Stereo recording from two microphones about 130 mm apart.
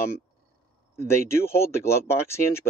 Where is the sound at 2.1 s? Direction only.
20° left (ahead or behind).